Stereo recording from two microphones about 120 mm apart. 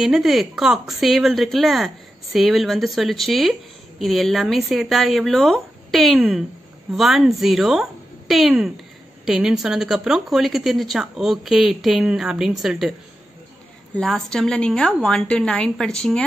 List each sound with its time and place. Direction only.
0.0 s speech: centre (ahead or behind)
13.9 s speech: 5° left (ahead or behind)